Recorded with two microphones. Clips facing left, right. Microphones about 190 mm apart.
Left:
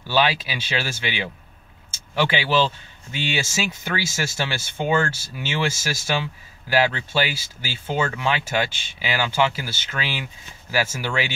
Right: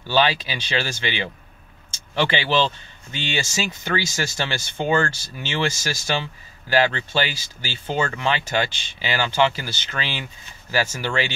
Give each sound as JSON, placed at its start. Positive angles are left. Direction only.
{"t": 0.1, "sound": "speech", "side_deg": 10}